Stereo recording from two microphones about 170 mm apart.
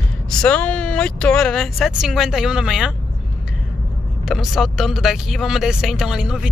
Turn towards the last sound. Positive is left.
turn(degrees=-5)  # may be behind; listen again after turning